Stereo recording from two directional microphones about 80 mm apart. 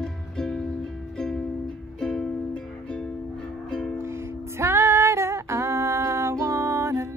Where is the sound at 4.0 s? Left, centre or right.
Right.